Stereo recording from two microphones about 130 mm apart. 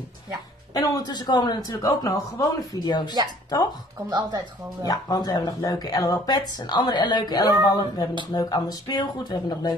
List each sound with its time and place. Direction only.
0.7 s speech: 30° left (ahead or behind)
4.0 s speech: 25° right (ahead or behind)
4.8 s speech: 30° left (ahead or behind)